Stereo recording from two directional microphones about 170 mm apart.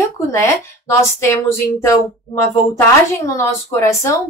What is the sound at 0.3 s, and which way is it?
Speech, 15° left (ahead or behind).